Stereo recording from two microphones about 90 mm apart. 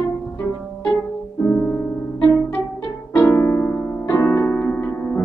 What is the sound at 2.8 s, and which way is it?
Music, 30° left (ahead or behind).